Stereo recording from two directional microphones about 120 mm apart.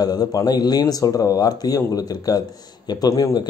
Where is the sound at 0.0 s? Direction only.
35° left (ahead or behind).